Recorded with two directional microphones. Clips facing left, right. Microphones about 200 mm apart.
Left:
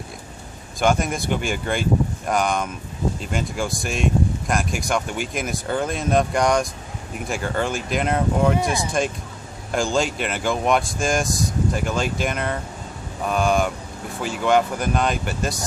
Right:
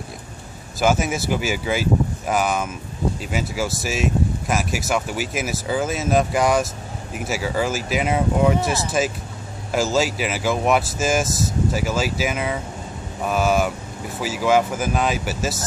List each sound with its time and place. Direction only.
0.7 s speech: 5° right (ahead or behind)